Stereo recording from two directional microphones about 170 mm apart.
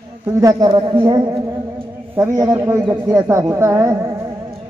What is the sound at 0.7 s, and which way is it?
A man's voice, 25° right (ahead or behind).